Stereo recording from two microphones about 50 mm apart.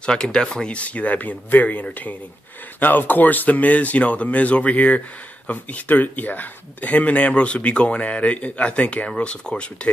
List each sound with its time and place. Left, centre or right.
0.0 s speech: centre
0.7 s speech: left